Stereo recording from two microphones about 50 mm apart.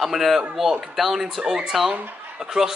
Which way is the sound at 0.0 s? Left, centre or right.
Centre.